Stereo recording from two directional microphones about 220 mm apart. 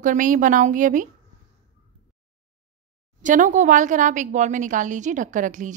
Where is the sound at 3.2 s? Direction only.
35° right (ahead or behind).